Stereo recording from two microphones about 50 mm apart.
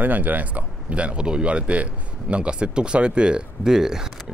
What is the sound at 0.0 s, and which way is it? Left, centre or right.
Speech, right.